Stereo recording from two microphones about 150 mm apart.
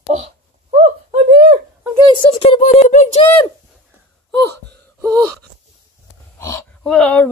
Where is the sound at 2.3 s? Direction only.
35° left (ahead or behind).